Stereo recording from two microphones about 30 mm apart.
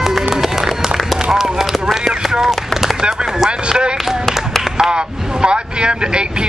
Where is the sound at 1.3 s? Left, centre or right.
Right.